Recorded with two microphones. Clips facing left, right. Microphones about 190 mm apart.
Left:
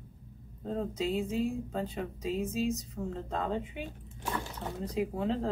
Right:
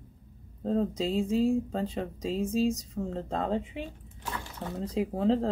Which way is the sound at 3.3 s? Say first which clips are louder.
Right 4 dB; 30° right (ahead or behind).